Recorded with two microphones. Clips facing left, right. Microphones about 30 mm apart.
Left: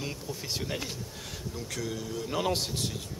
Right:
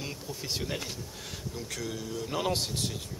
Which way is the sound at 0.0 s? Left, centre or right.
Centre.